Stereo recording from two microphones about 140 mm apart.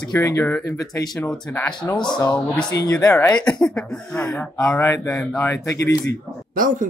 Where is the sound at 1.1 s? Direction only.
5° left (ahead or behind).